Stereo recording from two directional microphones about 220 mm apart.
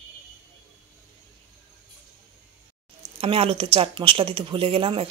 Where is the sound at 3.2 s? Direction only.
25° right (ahead or behind).